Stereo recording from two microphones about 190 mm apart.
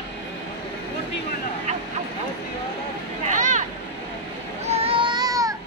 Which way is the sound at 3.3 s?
40° right (ahead or behind).